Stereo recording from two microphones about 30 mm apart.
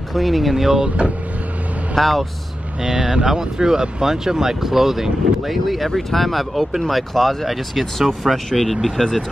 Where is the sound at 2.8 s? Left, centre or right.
Centre.